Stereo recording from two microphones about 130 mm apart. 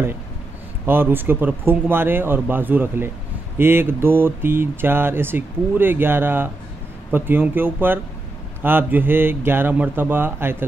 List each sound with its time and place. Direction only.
0.8 s speech: 15° right (ahead or behind)